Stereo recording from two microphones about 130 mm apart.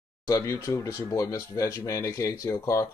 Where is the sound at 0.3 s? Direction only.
25° left (ahead or behind).